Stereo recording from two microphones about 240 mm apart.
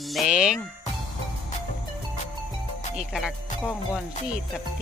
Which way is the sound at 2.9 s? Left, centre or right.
Centre.